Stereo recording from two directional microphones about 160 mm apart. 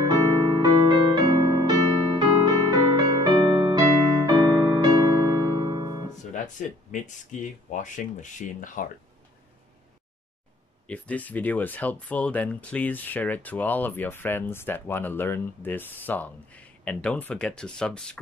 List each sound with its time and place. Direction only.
0.6 s music: 30° right (ahead or behind)
6.3 s speech: 50° left (ahead or behind)
10.9 s speech: 10° left (ahead or behind)